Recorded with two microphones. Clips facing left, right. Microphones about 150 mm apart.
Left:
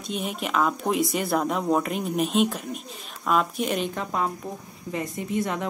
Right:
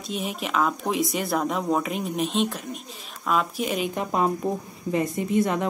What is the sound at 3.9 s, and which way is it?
A woman's voice, 20° right (ahead or behind).